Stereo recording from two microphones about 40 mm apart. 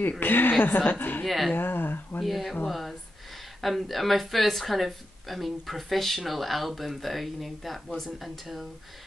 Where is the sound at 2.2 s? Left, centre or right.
Centre.